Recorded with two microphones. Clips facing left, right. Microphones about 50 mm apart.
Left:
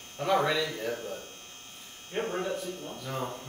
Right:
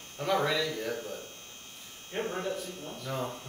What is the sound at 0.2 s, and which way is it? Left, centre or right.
Speech, centre.